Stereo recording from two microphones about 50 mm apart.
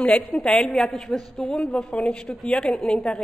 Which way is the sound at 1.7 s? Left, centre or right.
Centre.